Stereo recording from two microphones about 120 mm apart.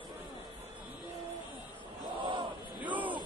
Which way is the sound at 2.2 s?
40° right (ahead or behind).